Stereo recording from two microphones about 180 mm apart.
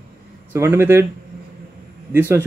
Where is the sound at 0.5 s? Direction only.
15° right (ahead or behind).